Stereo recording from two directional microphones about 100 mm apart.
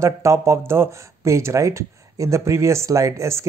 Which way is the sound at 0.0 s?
30° right (ahead or behind).